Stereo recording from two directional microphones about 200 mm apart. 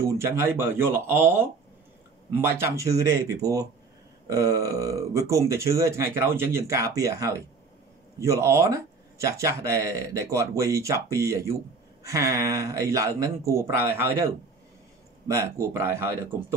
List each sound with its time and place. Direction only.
0.2 s speech: 10° right (ahead or behind)
15.2 s speech: 15° right (ahead or behind)